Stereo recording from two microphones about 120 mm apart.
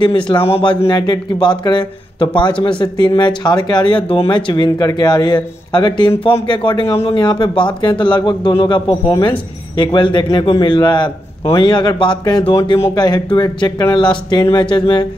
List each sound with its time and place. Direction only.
0.0 s speech: 40° left (ahead or behind)
0.8 s speech: 30° left (ahead or behind)